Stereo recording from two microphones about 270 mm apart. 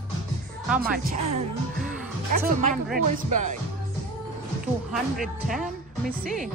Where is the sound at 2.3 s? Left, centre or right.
Right.